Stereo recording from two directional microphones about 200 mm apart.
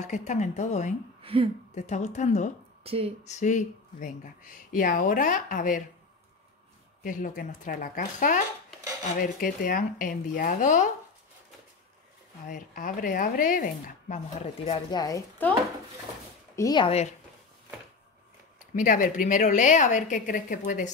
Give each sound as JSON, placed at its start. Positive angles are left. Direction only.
{"t": 0.0, "sound": "speech", "side_deg": 35}
{"t": 1.2, "sound": "a sound", "side_deg": -25}
{"t": 1.8, "sound": "speech", "side_deg": 35}
{"t": 2.8, "sound": "speech", "side_deg": -30}
{"t": 3.3, "sound": "speech", "side_deg": 35}
{"t": 7.0, "sound": "speech", "side_deg": 45}
{"t": 12.4, "sound": "speech", "side_deg": 45}
{"t": 16.5, "sound": "speech", "side_deg": 20}
{"t": 18.8, "sound": "speech", "side_deg": 45}